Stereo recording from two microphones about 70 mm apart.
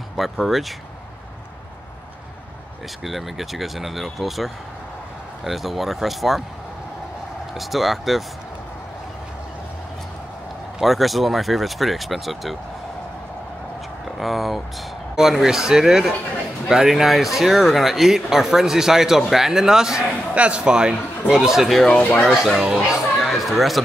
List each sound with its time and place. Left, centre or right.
0.2 s speech: centre
3.0 s speech: centre
7.5 s speech: centre
10.8 s speech: centre
14.0 s speech: centre
21.9 s speech: centre
22.3 s speech: centre